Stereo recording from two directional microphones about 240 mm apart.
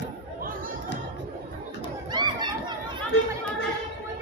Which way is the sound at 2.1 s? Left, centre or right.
Centre.